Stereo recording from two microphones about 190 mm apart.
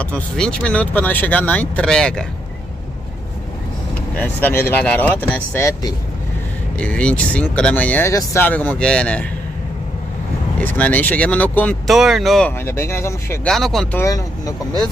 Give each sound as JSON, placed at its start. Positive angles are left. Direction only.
{"t": 0.0, "sound": "speech", "side_deg": 5}
{"t": 4.2, "sound": "speech", "side_deg": 10}
{"t": 6.8, "sound": "speech", "side_deg": 5}
{"t": 10.6, "sound": "speech", "side_deg": 10}
{"t": 11.9, "sound": "speech", "side_deg": 0}
{"t": 13.5, "sound": "speech", "side_deg": 0}
{"t": 14.0, "sound": "speech", "side_deg": 15}